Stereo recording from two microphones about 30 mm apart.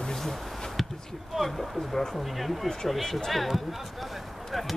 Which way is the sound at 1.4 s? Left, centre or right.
Centre.